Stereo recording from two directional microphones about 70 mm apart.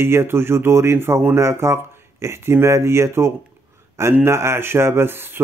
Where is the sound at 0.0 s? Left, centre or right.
Right.